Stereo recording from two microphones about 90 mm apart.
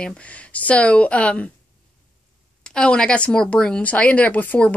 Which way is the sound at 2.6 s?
10° left (ahead or behind).